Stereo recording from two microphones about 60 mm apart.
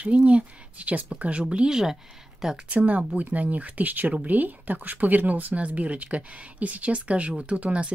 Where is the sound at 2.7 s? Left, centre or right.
Right.